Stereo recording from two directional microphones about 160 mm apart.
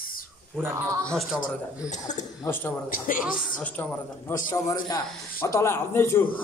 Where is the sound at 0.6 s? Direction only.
20° right (ahead or behind).